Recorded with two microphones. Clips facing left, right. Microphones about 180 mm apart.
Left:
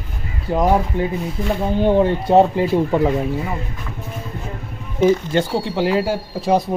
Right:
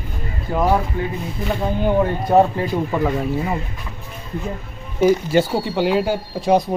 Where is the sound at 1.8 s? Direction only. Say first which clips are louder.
Left 4 dB; 25° left (ahead or behind).